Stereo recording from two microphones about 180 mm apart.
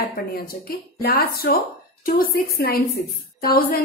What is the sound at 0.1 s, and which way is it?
Speech, 55° left (ahead or behind).